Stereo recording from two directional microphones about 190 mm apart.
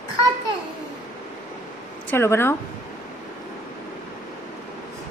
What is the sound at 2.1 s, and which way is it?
Speech, 15° left (ahead or behind).